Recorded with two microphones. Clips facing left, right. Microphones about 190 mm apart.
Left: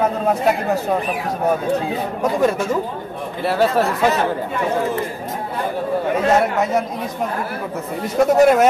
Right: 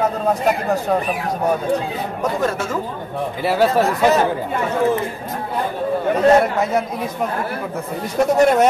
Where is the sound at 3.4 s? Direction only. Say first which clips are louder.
Right 1 dB; centre (ahead or behind).